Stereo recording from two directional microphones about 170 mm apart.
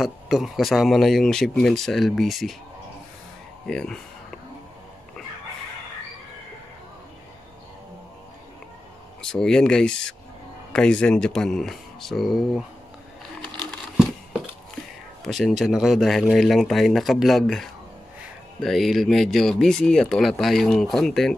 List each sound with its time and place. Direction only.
0.0 s speech: centre (ahead or behind)
3.6 s music: 5° left (ahead or behind)
9.2 s speech: 5° left (ahead or behind)
13.7 s a sound: 5° right (ahead or behind)
15.2 s speech: centre (ahead or behind)